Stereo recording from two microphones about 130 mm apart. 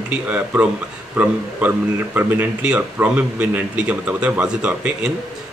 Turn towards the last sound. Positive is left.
turn(degrees=-5)  # may be behind; listen again after turning